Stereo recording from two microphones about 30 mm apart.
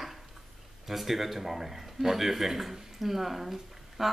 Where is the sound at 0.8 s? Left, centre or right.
Centre.